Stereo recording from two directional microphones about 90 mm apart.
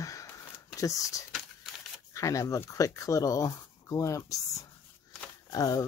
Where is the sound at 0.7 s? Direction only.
40° left (ahead or behind).